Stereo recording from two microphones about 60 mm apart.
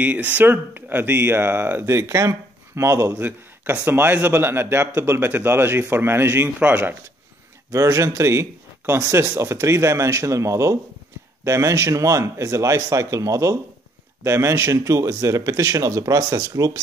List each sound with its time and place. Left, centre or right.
0.0 s speech: right
1.9 s speech: right
3.2 s speech: right
6.6 s speech: right
7.7 s a man's voice: right
14.2 s a man's voice: right